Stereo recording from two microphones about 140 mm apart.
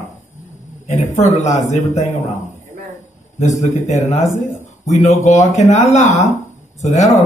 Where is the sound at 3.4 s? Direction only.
60° left (ahead or behind).